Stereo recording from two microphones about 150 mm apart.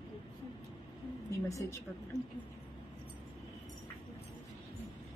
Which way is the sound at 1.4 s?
20° left (ahead or behind).